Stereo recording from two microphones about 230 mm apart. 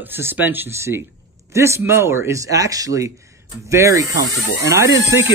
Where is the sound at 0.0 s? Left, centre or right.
Centre.